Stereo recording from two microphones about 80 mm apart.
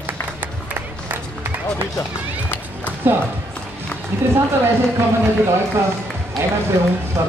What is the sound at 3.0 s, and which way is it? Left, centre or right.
Speech, right.